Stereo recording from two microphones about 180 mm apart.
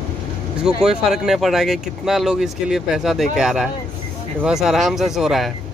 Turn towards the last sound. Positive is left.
turn(degrees=0)  # may be behind; listen again after turning